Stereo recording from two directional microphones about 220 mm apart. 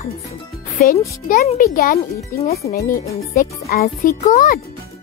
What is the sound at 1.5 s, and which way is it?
Music, 40° left (ahead or behind).